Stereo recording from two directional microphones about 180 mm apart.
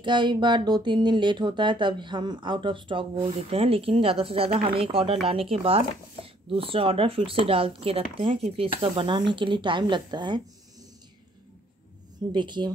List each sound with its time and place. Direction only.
0.0 s speech: 25° right (ahead or behind)
12.3 s speech: 25° right (ahead or behind)